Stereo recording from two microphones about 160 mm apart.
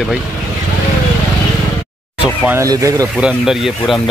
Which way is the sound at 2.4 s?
20° right (ahead or behind).